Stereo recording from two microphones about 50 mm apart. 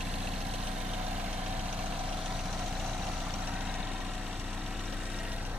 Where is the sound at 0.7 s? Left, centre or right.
Centre.